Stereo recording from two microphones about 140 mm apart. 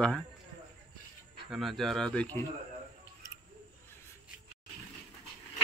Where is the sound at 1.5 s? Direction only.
Centre (ahead or behind).